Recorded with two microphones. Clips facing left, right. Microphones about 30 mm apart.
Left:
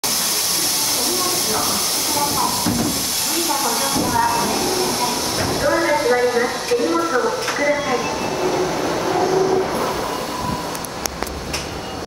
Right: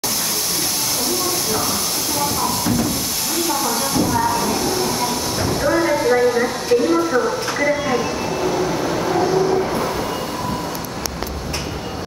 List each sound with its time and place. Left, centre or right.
2.1 s speech: left
3.4 s a sound: centre
6.0 s speech: centre
7.7 s train: centre